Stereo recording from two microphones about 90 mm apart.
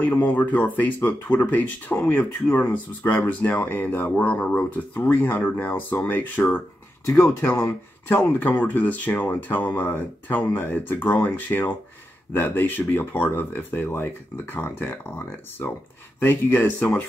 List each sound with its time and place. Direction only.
0.0 s speech: 20° left (ahead or behind)
16.2 s speech: 20° left (ahead or behind)